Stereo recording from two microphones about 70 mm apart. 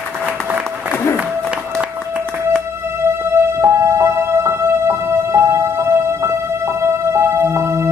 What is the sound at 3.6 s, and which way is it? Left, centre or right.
Music, right.